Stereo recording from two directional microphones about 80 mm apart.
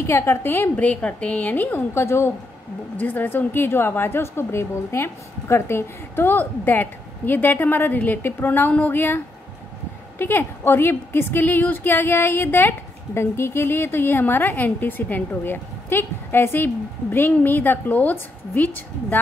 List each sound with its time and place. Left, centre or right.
0.0 s a woman's voice: left
3.0 s a woman's voice: left